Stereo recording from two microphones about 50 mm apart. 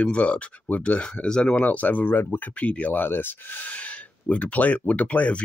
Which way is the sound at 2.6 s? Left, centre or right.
Left.